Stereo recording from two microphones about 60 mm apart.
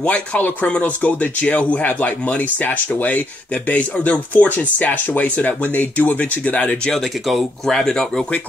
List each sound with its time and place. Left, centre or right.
0.0 s speech: left
6.9 s speech: centre